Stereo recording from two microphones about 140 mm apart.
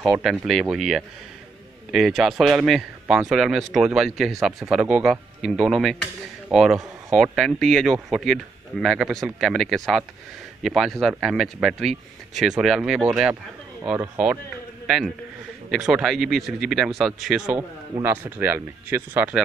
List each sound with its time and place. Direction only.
0.0 s a man's voice: 5° right (ahead or behind)
15.7 s a man's voice: 5° right (ahead or behind)
18.0 s speech: 15° right (ahead or behind)